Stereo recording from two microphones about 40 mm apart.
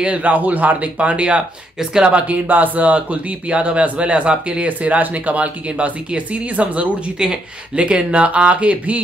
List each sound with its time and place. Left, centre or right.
0.0 s speech: right
1.8 s speech: centre
2.4 s speech: right